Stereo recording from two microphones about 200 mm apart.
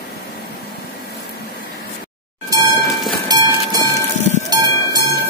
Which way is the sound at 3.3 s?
20° right (ahead or behind).